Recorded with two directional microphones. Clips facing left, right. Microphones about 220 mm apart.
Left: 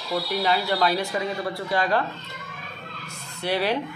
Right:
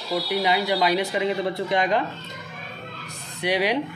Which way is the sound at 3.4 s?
15° right (ahead or behind).